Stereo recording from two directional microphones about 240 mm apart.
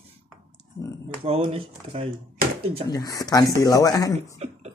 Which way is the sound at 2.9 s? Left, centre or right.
Centre.